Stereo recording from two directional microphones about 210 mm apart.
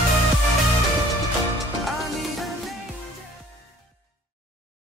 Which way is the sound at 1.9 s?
Centre (ahead or behind).